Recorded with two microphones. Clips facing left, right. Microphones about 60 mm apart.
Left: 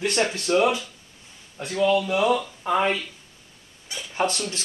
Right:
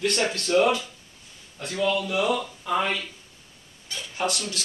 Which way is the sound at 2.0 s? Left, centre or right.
Left.